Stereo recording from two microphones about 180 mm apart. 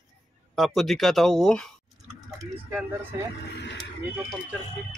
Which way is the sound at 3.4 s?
70° left (ahead or behind).